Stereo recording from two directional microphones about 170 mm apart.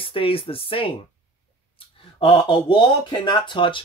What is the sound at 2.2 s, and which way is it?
Speech, 30° left (ahead or behind).